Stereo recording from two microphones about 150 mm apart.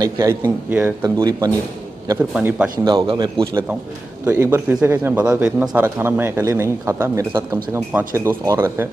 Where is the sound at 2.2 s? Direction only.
10° right (ahead or behind).